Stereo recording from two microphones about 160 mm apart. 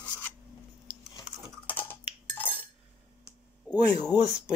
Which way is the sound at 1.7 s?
10° left (ahead or behind).